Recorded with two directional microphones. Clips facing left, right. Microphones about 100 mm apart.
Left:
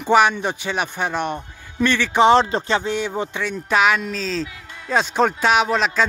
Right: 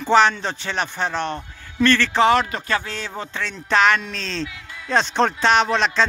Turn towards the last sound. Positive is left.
turn(degrees=5)  # may be behind; listen again after turning